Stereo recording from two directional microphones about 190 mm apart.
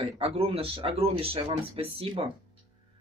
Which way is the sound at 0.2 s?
30° right (ahead or behind).